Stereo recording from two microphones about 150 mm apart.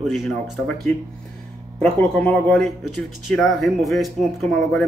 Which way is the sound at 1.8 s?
5° left (ahead or behind).